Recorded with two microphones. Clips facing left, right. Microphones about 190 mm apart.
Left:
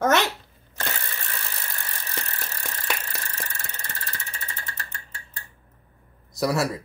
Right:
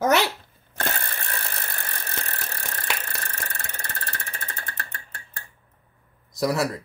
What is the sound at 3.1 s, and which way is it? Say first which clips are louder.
Engine: right 1 dB; 55° right (ahead or behind).